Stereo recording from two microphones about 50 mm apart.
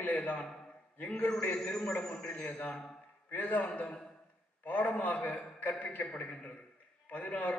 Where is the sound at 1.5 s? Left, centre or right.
Centre.